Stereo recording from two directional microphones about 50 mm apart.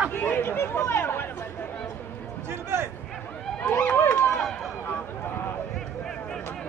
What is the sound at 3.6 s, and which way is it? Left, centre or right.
Run, left.